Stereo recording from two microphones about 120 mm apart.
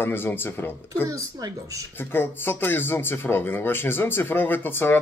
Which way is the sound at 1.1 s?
30° right (ahead or behind).